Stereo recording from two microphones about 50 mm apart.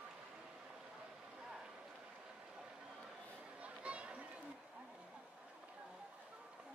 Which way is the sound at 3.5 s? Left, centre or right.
Right.